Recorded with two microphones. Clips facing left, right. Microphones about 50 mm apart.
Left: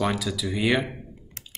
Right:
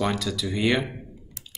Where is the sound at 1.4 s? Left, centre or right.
Left.